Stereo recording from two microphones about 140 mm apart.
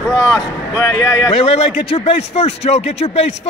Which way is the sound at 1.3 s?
45° left (ahead or behind).